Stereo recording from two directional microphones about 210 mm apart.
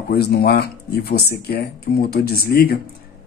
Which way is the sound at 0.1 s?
50° left (ahead or behind).